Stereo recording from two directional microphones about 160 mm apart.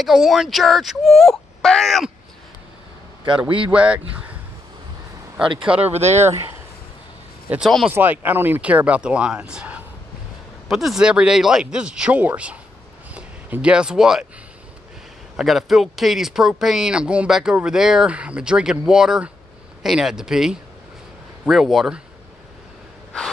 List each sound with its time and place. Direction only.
0.0 s speech: centre (ahead or behind)
3.4 s speech: 30° right (ahead or behind)
3.7 s speech: 5° right (ahead or behind)
5.6 s speech: 5° right (ahead or behind)
5.9 s speech: 45° right (ahead or behind)
7.4 s speech: 5° right (ahead or behind)
15.3 s speech: centre (ahead or behind)